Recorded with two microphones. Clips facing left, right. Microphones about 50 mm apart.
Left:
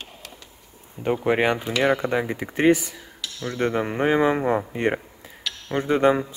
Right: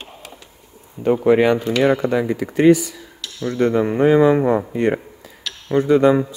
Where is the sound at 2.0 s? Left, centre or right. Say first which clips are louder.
Right 5 dB; left.